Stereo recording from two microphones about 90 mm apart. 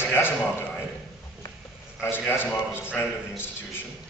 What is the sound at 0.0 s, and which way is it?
Speech, 25° left (ahead or behind).